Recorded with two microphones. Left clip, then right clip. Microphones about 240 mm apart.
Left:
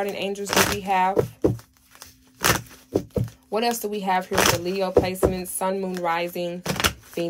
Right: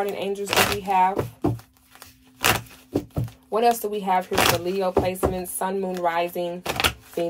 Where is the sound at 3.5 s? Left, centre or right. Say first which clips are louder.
Right 4 dB; centre.